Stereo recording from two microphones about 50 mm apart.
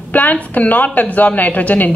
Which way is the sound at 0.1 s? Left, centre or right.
Left.